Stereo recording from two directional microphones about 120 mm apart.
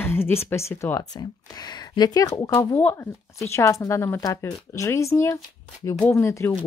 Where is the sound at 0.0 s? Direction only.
20° left (ahead or behind).